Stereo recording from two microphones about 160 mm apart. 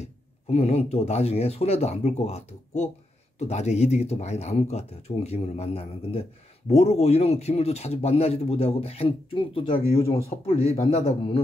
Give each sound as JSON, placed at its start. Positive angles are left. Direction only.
{"t": 0.0, "sound": "speech", "side_deg": 40}